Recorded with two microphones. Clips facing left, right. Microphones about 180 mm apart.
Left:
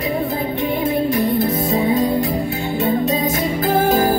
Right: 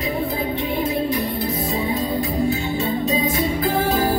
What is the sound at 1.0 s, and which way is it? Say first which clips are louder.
Music: left 5 dB; 45° left (ahead or behind).